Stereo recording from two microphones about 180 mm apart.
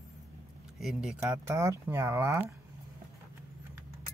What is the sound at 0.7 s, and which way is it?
Speech, centre (ahead or behind).